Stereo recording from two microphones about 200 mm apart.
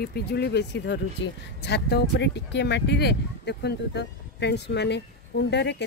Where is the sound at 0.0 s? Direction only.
55° left (ahead or behind).